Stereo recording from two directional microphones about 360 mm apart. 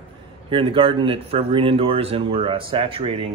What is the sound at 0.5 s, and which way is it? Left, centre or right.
Speech, centre.